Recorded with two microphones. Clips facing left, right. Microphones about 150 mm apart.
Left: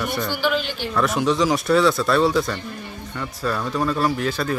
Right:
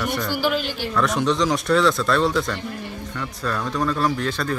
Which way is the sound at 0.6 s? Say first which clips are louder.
Right 1 dB; 45° right (ahead or behind).